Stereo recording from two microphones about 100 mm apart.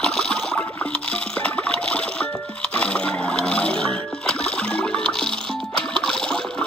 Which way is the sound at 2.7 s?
10° left (ahead or behind).